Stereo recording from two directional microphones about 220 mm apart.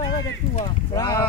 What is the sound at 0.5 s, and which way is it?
Speech, 20° left (ahead or behind).